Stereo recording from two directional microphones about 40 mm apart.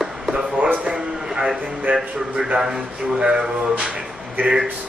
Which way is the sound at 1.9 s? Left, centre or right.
Right.